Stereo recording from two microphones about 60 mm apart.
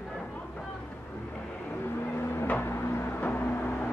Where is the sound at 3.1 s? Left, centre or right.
Left.